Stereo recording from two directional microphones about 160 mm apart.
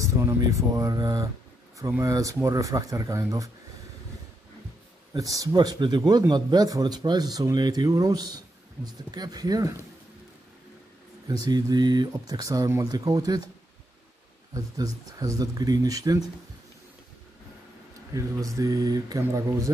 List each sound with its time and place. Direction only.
0.0 s speech: 20° right (ahead or behind)
5.1 s speech: 20° right (ahead or behind)
11.2 s speech: 25° right (ahead or behind)
14.5 s speech: 20° right (ahead or behind)
18.1 s speech: 20° right (ahead or behind)